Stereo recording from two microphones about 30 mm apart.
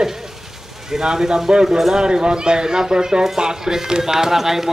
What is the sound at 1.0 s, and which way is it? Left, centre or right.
A man's voice, right.